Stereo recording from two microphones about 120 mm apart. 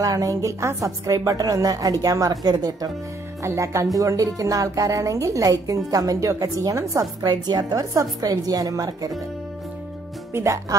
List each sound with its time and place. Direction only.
0.0 s a woman's voice: 30° right (ahead or behind)
10.3 s a woman's voice: 25° right (ahead or behind)